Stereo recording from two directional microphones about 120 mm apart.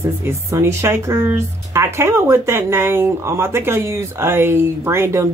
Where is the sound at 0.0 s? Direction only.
20° right (ahead or behind).